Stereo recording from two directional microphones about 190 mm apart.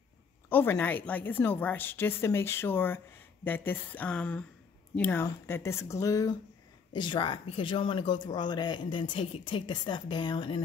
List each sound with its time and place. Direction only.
0.5 s speech: 10° left (ahead or behind); by 10.6 s 25° left (ahead or behind)